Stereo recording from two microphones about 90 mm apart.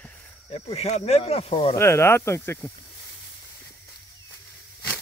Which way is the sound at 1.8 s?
30° left (ahead or behind).